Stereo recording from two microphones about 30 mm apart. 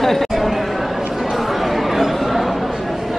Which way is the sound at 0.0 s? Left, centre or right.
Centre.